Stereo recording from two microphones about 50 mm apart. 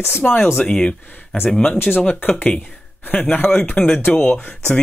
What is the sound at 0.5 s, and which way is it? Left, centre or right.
Speech, centre.